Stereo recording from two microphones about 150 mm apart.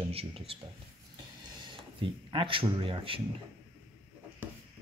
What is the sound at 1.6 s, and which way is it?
Speech, 35° right (ahead or behind).